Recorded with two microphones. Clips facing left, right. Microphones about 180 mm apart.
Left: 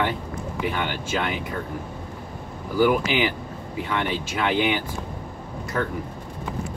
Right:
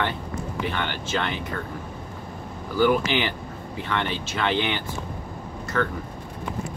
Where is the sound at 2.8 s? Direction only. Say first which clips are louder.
Left 1 dB; 10° left (ahead or behind).